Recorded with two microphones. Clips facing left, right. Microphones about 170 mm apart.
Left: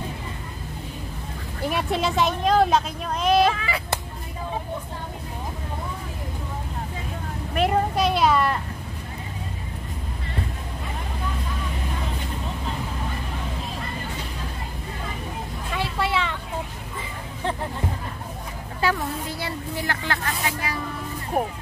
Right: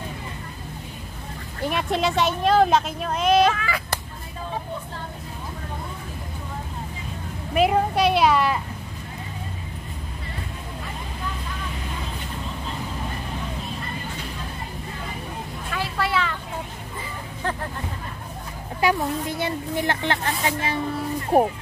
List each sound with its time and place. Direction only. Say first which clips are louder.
1.6 s speech: right 1 dB; centre (ahead or behind)
3.5 s speech: even; 25° left (ahead or behind)
7.5 s speech: right 2 dB; 5° right (ahead or behind)
15.7 s a sound: even; 25° left (ahead or behind)
18.8 s speech: right 3 dB; 15° right (ahead or behind)
21.3 s speech: right 7 dB; 40° right (ahead or behind)